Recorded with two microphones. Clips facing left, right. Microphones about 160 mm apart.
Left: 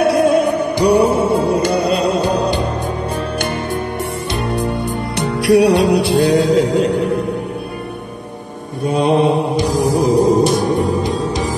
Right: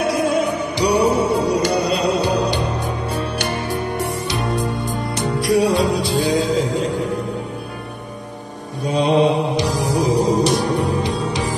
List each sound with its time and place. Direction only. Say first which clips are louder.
0.0 s mantra: left 6 dB; 60° left (ahead or behind)
3.3 s music: left 2 dB; 55° left (ahead or behind)
8.8 s mantra: left 2 dB; 55° left (ahead or behind)